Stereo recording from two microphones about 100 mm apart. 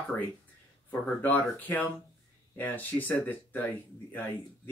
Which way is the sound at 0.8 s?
15° left (ahead or behind).